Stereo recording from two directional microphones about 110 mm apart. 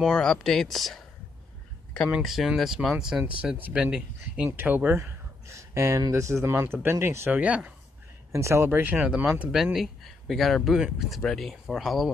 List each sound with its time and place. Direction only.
0.1 s speech: 5° left (ahead or behind)
2.0 s speech: 5° right (ahead or behind); by 7.3 s 25° right (ahead or behind)
7.3 s speech: 10° right (ahead or behind)
8.3 s speech: 25° right (ahead or behind); by 12.1 s centre (ahead or behind)